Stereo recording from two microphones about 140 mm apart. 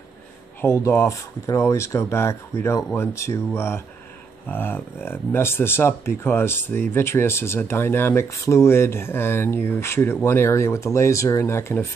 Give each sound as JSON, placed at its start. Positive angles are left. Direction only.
{"t": 0.6, "sound": "speech", "side_deg": 20}